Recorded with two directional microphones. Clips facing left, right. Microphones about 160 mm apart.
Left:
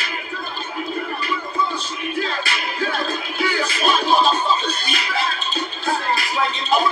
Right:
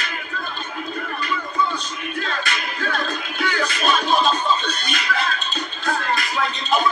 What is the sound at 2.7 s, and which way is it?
Music, 5° left (ahead or behind).